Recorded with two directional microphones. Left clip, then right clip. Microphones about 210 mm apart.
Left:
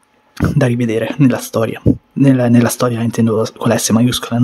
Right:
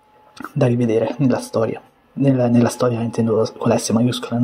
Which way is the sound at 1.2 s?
45° left (ahead or behind).